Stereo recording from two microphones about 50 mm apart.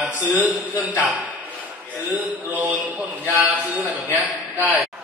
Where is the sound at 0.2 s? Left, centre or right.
Right.